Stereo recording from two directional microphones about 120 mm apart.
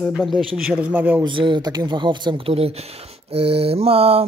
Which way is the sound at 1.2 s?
40° right (ahead or behind).